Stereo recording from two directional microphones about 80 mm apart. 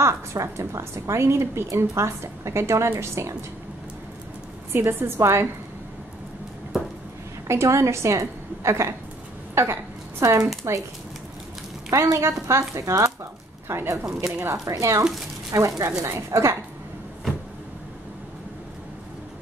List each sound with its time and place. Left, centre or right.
0.0 s a woman's voice: right
4.7 s a woman's voice: right
7.4 s a woman's voice: right
11.9 s a woman's voice: right